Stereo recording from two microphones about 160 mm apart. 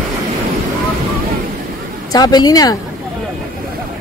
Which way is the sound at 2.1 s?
25° left (ahead or behind).